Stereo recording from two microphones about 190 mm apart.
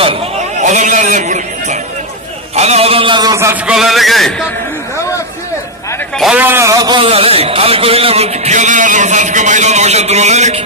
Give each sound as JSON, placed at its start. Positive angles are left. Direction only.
{"t": 0.0, "sound": "a sound", "side_deg": -30}
{"t": 3.6, "sound": "a man's voice", "side_deg": 0}
{"t": 6.1, "sound": "speech", "side_deg": -5}